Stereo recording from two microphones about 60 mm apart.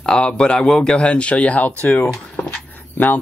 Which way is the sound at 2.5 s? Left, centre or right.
Left.